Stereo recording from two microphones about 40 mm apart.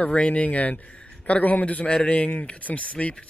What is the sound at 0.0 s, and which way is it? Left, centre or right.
Speech, left.